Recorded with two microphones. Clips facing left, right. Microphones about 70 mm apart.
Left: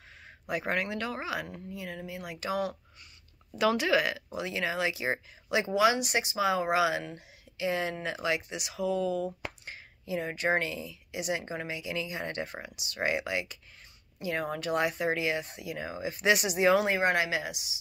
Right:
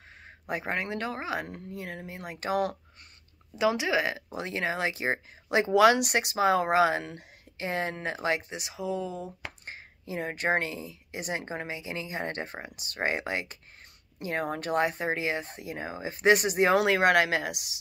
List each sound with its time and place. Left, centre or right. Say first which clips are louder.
0.5 s speech: even; right
1.5 s speech: right 1 dB; right
3.5 s speech: even; centre
4.4 s speech: right 1 dB; right
5.8 s speech: right 5 dB; right
9.7 s speech: left 4 dB; right
16.8 s speech: right 4 dB; right